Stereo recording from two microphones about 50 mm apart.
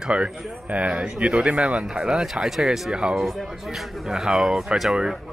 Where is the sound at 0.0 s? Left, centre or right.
Right.